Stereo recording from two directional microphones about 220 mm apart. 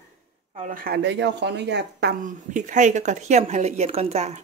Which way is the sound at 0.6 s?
40° right (ahead or behind).